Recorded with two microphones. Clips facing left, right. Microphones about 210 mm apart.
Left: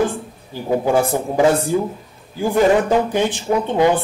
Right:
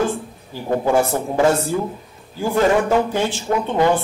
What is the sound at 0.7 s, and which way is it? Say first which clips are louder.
A woman's voice: left 1 dB; 15° left (ahead or behind).